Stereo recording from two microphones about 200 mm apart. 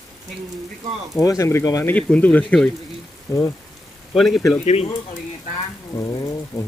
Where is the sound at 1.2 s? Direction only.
15° left (ahead or behind).